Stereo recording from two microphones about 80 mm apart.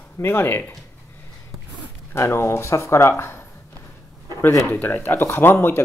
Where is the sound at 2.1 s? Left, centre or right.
Left.